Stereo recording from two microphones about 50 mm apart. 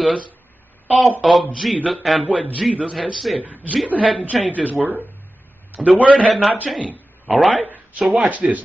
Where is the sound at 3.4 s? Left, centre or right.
Right.